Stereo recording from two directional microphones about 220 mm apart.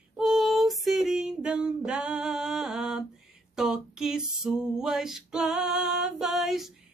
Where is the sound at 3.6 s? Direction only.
5° right (ahead or behind).